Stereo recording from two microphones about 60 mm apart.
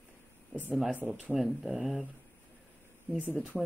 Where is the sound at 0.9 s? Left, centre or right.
Right.